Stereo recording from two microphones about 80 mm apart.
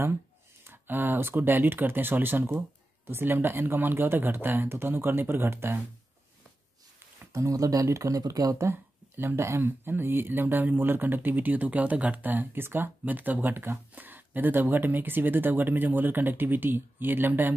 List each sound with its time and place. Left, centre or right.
0.7 s speech: right
7.3 s speech: right
8.6 s speech: right